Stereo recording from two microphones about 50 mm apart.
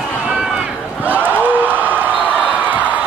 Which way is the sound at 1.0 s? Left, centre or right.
Right.